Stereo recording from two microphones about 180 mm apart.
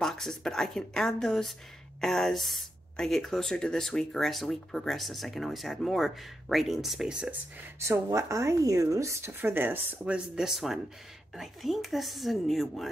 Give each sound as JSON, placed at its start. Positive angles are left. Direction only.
{"t": 0.0, "sound": "speech", "side_deg": 0}
{"t": 7.8, "sound": "speech", "side_deg": -15}